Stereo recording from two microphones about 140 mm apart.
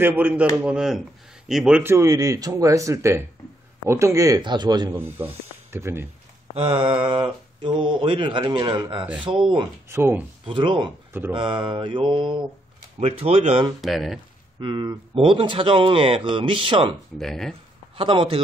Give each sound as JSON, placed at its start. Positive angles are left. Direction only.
{"t": 0.0, "sound": "speech", "side_deg": -10}
{"t": 1.8, "sound": "speech", "side_deg": -20}
{"t": 4.9, "sound": "speech", "side_deg": -15}
{"t": 6.5, "sound": "speech", "side_deg": -40}
{"t": 9.8, "sound": "speech", "side_deg": -15}
{"t": 10.4, "sound": "speech", "side_deg": -35}
{"t": 13.7, "sound": "speech", "side_deg": 0}
{"t": 14.6, "sound": "speech", "side_deg": -35}
{"t": 17.2, "sound": "speech", "side_deg": 5}
{"t": 17.9, "sound": "speech", "side_deg": -40}